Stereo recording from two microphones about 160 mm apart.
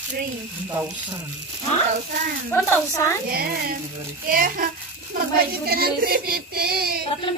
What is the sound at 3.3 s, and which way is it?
Child singing, 70° right (ahead or behind).